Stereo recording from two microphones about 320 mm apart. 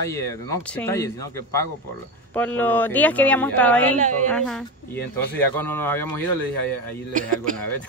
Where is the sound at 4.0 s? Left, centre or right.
Right.